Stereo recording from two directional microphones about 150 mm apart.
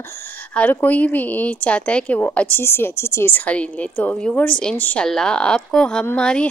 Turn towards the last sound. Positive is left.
turn(degrees=5)  # may be behind; listen again after turning